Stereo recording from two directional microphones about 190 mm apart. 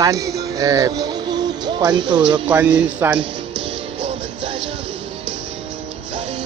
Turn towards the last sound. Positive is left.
turn(degrees=-30)  # may be behind; listen again after turning